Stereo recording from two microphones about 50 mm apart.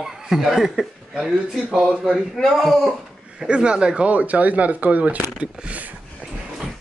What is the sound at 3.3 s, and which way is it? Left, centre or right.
Speech, centre.